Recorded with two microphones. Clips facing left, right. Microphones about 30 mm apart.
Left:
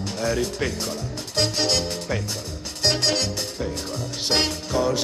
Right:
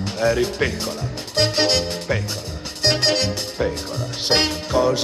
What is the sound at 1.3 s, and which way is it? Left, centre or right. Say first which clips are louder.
Music: right 4 dB; right.